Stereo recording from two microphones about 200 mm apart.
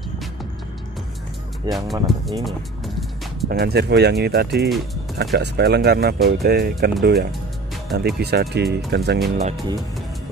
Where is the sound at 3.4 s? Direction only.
50° right (ahead or behind).